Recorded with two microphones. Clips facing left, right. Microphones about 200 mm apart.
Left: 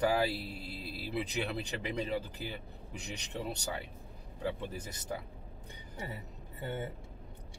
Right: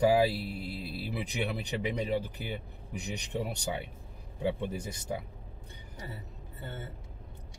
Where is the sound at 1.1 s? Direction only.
15° right (ahead or behind).